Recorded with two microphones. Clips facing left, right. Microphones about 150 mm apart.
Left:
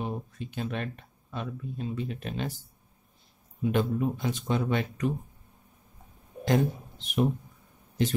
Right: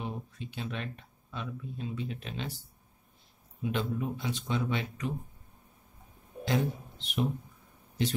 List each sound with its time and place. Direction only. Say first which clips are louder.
0.0 s a sound: left 4 dB; 45° left (ahead or behind)
1.3 s speech: left 3 dB; 50° left (ahead or behind)
3.7 s speech: left 5 dB; 50° left (ahead or behind)
6.4 s speech: left 5 dB; 45° left (ahead or behind)